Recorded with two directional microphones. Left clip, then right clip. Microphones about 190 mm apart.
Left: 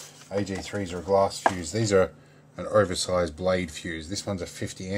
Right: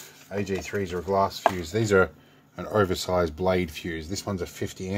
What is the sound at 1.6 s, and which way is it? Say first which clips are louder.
Speech: right 2 dB; 20° right (ahead or behind).